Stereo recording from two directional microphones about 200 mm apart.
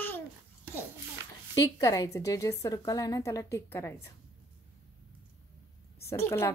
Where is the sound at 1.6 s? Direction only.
15° left (ahead or behind).